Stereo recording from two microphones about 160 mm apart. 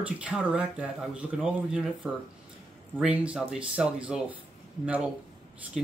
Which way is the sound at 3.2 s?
5° right (ahead or behind).